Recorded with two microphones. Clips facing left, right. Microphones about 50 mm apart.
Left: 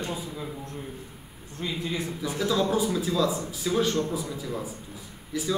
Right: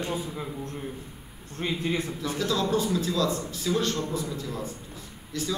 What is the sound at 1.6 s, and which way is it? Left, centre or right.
Speech, right.